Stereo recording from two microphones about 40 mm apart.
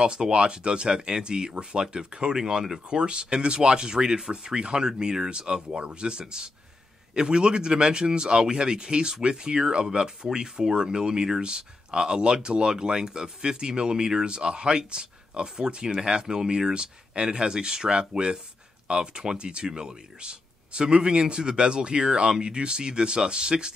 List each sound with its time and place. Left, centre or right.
0.0 s speech: right
2.9 s speech: right